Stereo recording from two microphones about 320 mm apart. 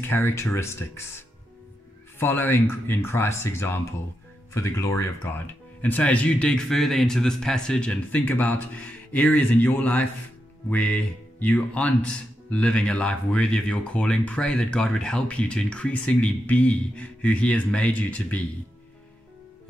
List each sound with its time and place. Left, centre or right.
0.0 s speech: centre